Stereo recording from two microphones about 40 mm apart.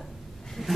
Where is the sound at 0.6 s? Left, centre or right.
Centre.